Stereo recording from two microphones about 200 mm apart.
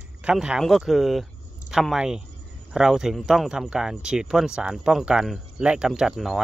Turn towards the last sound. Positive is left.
turn(degrees=0)  # may be behind; listen again after turning